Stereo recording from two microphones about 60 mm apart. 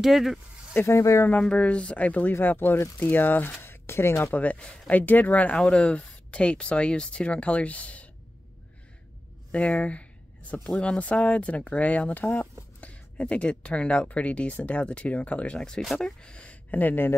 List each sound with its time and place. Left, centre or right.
0.0 s speech: centre
0.8 s speech: left
1.4 s speech: centre
3.6 s a sound: left
4.3 s speech: left
9.5 s speech: left
16.7 s speech: left